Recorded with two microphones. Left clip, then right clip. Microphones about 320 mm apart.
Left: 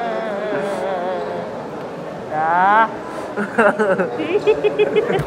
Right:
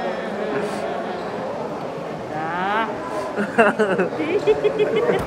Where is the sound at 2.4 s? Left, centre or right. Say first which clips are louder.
Left 9 dB; centre.